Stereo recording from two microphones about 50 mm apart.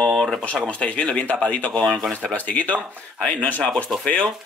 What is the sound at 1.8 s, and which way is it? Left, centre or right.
Mantra, centre.